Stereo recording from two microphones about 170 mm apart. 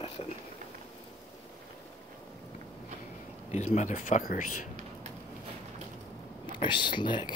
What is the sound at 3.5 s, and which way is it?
Speech, 40° left (ahead or behind).